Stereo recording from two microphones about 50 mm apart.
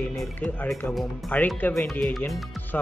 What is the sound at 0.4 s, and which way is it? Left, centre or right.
Speech, left.